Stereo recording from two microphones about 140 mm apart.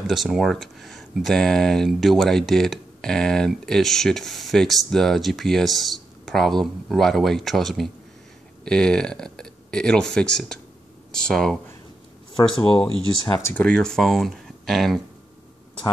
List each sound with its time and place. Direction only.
0.0 s speech: centre (ahead or behind)